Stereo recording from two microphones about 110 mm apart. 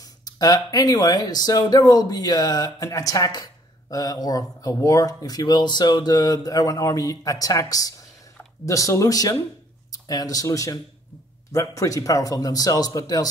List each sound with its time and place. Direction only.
0.0 s speech: 35° left (ahead or behind)